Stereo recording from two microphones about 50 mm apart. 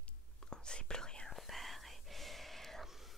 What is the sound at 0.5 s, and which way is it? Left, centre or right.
Whispering, centre.